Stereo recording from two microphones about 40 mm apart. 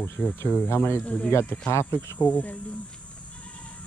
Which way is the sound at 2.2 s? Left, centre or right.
Left.